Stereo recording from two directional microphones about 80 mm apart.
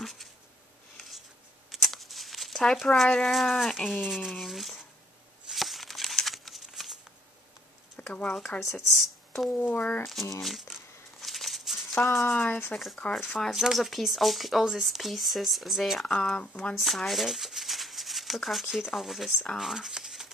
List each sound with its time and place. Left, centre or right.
1.7 s shuffling cards: centre
3.3 s speech: centre
5.5 s a sound: centre
8.0 s speech: centre
8.7 s speech: centre
9.5 s speech: left
10.4 s a sound: centre
12.4 s speech: left
12.7 s speech: centre
16.2 s speech: centre
16.7 s speech: centre
19.6 s a sound: centre